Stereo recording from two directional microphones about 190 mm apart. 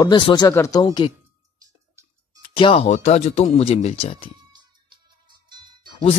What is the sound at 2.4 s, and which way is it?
Speech, 25° left (ahead or behind).